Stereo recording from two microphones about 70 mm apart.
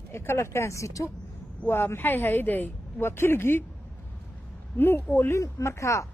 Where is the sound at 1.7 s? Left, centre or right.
Left.